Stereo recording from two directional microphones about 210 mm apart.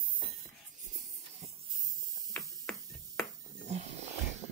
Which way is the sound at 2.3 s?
5° left (ahead or behind).